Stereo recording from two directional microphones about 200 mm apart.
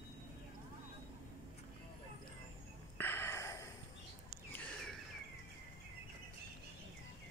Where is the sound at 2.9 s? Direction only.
10° left (ahead or behind).